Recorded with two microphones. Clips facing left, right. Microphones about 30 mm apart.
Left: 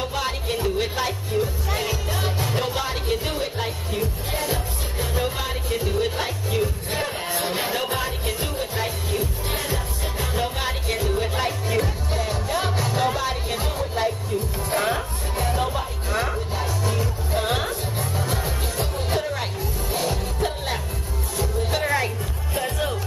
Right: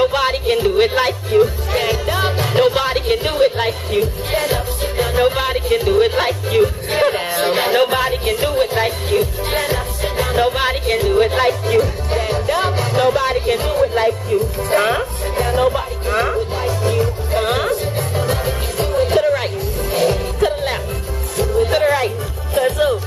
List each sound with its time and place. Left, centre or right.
0.0 s music: right
22.6 s music: right